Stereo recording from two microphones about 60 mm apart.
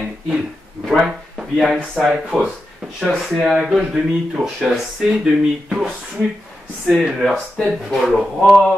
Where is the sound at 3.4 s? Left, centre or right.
Right.